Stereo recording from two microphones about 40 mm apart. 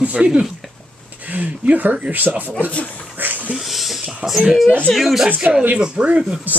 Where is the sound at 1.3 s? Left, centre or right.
Right.